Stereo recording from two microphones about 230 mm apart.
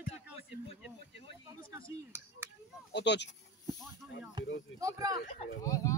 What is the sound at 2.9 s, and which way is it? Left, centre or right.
Speech, left.